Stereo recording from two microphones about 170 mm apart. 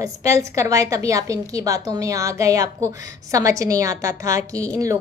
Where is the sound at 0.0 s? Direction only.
20° right (ahead or behind).